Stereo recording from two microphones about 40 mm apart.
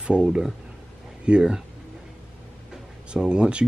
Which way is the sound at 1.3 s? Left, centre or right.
Right.